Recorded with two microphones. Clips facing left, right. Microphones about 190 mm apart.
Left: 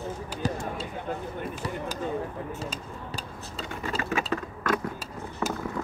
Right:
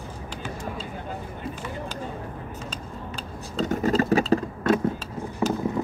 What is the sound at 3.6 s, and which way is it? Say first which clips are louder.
Typing: right 11 dB; 40° right (ahead or behind).